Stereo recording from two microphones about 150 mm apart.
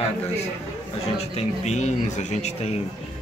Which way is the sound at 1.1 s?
45° left (ahead or behind).